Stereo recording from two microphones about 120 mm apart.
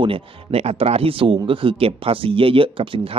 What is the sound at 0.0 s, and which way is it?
Speech, 50° right (ahead or behind).